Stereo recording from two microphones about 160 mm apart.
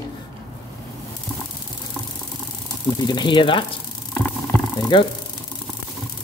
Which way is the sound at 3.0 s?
25° left (ahead or behind).